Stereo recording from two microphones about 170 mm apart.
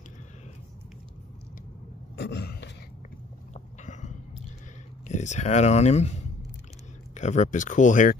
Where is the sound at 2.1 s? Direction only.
75° left (ahead or behind).